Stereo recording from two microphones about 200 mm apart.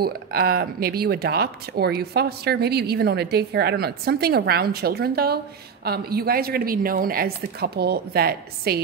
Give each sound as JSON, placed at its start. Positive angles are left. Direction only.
{"t": 0.0, "sound": "speech", "side_deg": -50}